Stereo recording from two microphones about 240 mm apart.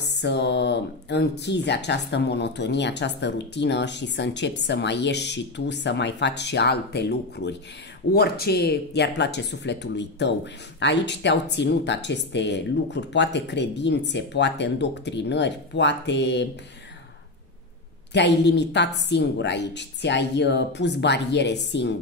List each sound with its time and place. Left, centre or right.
0.2 s speech: left
18.1 s speech: left